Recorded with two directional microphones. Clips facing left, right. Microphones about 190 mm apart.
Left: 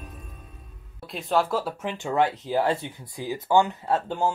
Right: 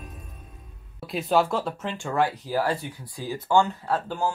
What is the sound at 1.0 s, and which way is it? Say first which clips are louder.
Speech: right 2 dB; centre (ahead or behind).